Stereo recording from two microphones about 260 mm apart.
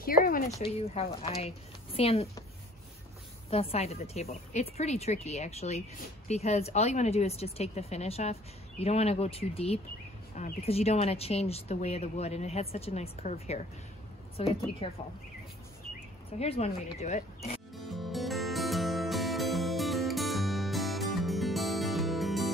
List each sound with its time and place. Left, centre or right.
0.0 s a sound: left
0.6 s a woman's voice: left
3.4 s speech: left
16.3 s speech: left
17.7 s music: centre